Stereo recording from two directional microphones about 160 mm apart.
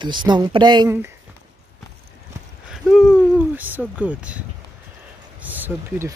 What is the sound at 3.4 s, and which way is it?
Speech, 10° right (ahead or behind).